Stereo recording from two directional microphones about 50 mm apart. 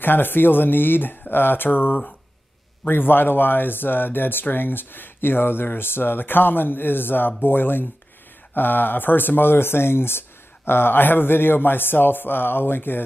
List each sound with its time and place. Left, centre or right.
0.0 s speech: left